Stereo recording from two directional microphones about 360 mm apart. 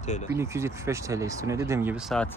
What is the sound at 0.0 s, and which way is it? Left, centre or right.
Speech, centre.